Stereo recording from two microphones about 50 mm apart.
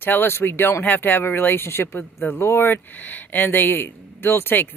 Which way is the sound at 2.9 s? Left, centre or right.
Left.